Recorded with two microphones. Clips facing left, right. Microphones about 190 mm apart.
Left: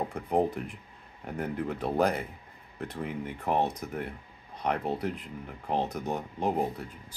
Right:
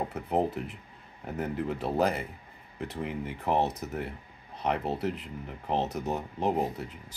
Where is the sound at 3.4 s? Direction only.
10° left (ahead or behind).